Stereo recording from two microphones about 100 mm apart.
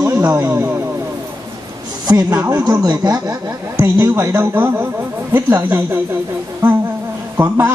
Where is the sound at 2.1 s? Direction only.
35° right (ahead or behind).